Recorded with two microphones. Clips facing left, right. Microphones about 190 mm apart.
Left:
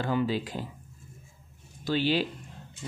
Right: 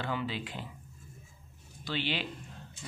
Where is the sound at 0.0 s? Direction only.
40° left (ahead or behind).